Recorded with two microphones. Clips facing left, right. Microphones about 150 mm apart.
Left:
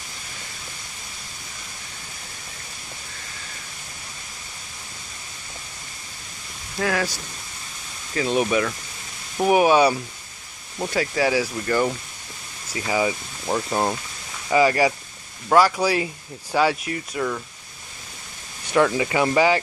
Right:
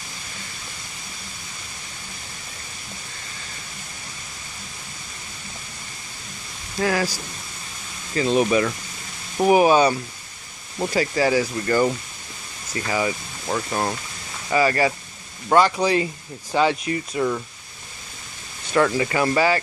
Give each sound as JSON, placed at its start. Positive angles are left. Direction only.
{"t": 6.8, "sound": "speech", "side_deg": -5}
{"t": 8.1, "sound": "speech", "side_deg": 0}
{"t": 12.7, "sound": "speech", "side_deg": 10}
{"t": 18.9, "sound": "speech", "side_deg": 15}